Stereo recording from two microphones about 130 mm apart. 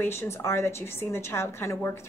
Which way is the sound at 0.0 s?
20° left (ahead or behind).